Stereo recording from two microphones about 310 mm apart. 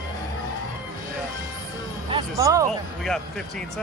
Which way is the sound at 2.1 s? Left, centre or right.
Centre.